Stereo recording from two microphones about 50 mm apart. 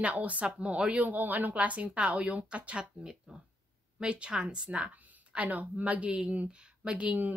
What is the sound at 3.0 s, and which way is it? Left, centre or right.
A woman's voice, centre.